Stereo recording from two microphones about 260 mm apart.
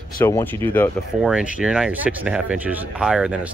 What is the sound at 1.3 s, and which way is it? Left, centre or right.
Speech, centre.